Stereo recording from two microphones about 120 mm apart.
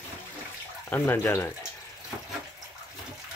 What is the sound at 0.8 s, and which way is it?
Speech, 15° left (ahead or behind).